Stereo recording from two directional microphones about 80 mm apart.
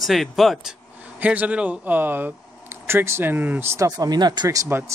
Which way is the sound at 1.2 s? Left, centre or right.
Centre.